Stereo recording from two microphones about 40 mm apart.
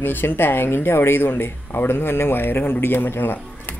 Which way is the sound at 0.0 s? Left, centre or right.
Left.